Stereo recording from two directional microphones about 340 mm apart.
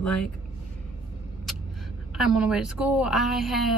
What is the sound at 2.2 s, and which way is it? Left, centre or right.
Speech, centre.